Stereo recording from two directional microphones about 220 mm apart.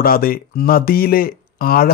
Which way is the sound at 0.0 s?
40° left (ahead or behind).